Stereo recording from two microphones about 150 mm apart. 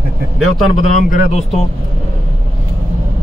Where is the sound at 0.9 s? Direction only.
60° left (ahead or behind).